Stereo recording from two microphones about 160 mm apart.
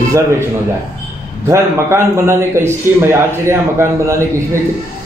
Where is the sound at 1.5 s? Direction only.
15° right (ahead or behind).